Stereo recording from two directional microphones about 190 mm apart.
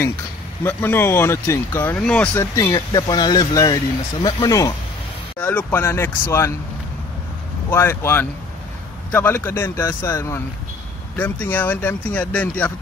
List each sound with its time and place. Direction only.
0.7 s speech: 10° left (ahead or behind)
7.7 s speech: 15° left (ahead or behind)